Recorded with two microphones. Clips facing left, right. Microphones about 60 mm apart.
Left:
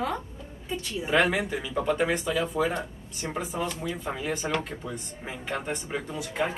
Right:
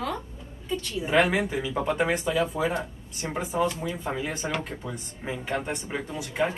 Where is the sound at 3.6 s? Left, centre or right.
Centre.